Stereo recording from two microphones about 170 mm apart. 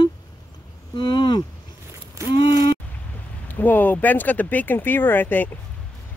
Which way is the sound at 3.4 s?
10° left (ahead or behind).